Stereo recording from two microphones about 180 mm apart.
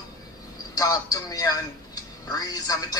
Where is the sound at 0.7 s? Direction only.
20° left (ahead or behind).